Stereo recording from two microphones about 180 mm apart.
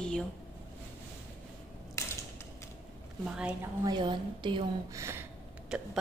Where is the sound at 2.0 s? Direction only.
15° left (ahead or behind).